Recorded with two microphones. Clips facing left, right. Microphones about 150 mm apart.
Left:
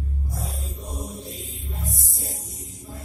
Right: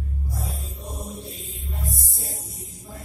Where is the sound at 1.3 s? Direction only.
40° left (ahead or behind).